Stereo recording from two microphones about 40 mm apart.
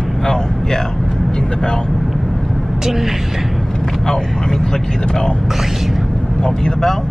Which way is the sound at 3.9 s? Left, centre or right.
Centre.